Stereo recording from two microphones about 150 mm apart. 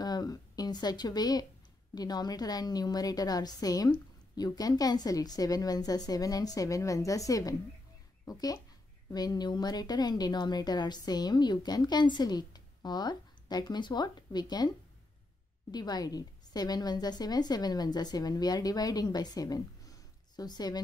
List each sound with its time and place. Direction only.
0.0 s a sound: 25° left (ahead or behind)
2.0 s a woman's voice: 25° left (ahead or behind)
15.7 s a woman's voice: 25° left (ahead or behind)